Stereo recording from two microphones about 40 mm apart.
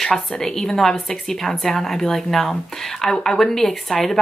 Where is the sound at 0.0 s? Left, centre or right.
Centre.